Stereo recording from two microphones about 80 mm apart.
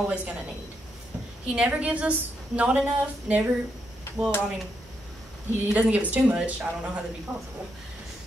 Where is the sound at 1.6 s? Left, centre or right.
Centre.